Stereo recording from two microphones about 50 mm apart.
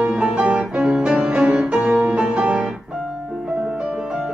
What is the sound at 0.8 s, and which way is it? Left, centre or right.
Music, centre.